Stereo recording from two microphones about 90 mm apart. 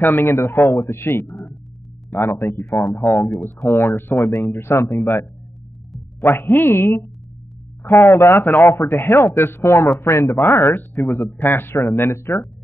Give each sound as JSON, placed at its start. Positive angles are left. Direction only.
{"t": 0.1, "sound": "speech", "side_deg": 25}
{"t": 3.2, "sound": "speech", "side_deg": 5}
{"t": 3.6, "sound": "speech", "side_deg": 30}
{"t": 4.3, "sound": "speech", "side_deg": 20}